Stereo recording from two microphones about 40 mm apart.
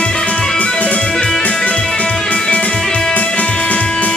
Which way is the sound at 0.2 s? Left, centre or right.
Left.